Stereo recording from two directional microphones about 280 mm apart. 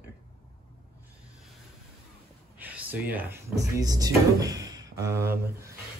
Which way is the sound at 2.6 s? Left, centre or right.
Centre.